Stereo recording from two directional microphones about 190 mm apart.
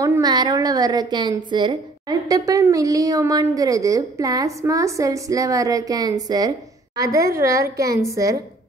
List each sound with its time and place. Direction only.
0.0 s a woman's voice: 20° right (ahead or behind)